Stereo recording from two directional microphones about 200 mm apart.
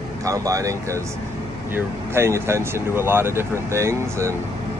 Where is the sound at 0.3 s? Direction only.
15° right (ahead or behind).